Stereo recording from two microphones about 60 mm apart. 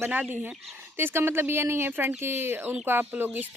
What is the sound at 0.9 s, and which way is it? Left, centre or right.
Speech, right.